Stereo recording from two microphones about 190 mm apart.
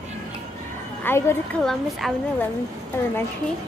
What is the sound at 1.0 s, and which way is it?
Speech, 10° left (ahead or behind).